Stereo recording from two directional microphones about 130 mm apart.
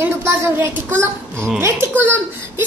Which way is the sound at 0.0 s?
20° right (ahead or behind).